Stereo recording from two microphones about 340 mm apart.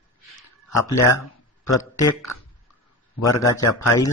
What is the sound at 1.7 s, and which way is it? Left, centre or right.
Speech, left.